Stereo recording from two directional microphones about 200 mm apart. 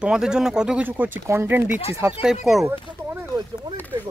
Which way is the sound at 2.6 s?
10° right (ahead or behind).